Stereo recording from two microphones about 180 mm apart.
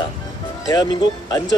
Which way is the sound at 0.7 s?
25° left (ahead or behind).